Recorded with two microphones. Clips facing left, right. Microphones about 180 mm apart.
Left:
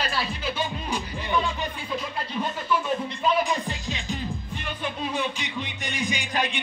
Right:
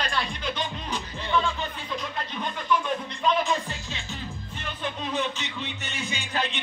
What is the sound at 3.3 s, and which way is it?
Music, 15° left (ahead or behind).